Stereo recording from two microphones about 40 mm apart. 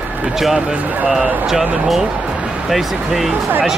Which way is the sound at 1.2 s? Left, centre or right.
Right.